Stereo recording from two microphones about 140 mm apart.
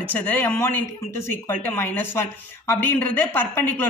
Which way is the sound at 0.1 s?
15° left (ahead or behind).